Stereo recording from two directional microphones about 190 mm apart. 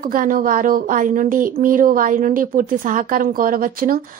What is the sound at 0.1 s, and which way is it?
A woman's voice, 45° right (ahead or behind).